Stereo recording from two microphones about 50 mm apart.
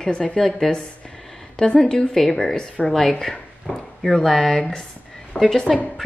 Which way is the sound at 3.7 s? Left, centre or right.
Centre.